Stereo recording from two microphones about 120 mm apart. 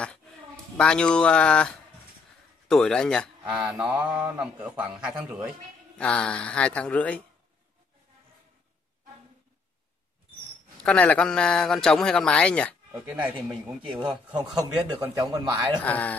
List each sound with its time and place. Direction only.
0.7 s a man's voice: 10° left (ahead or behind)
3.4 s a man's voice: 10° right (ahead or behind)
5.9 s a man's voice: 10° left (ahead or behind)
10.8 s a man's voice: 10° left (ahead or behind)
12.9 s a man's voice: 15° right (ahead or behind)
13.8 s speech: 5° right (ahead or behind)
15.0 s speech: 30° right (ahead or behind)
15.8 s a man's voice: 10° left (ahead or behind)